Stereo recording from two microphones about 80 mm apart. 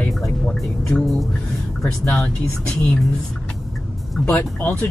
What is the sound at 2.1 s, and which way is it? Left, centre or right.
Speech, centre.